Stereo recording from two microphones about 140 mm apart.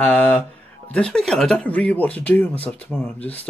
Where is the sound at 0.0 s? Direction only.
10° left (ahead or behind).